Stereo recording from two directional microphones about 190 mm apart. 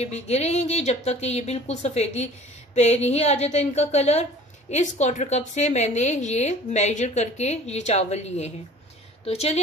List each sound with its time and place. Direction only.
0.0 s a woman's voice: 35° left (ahead or behind)